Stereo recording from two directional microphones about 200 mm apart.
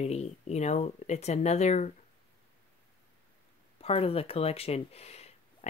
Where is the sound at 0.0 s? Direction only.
35° left (ahead or behind).